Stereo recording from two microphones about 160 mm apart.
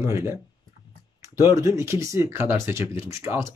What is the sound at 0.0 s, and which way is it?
Speech, 15° right (ahead or behind).